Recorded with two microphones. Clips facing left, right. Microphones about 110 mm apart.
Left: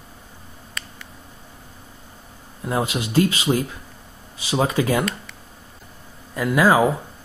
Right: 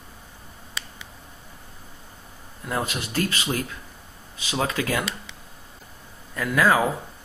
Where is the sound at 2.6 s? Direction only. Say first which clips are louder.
Left 5 dB; 20° left (ahead or behind).